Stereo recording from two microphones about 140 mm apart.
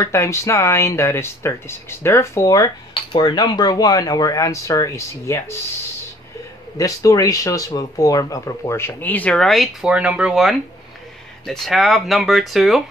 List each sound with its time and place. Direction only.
0.0 s speech: 20° left (ahead or behind)
2.9 s cutlery: 35° left (ahead or behind)
3.3 s speech: 30° left (ahead or behind)
6.8 s speech: 25° left (ahead or behind); by 12.8 s centre (ahead or behind)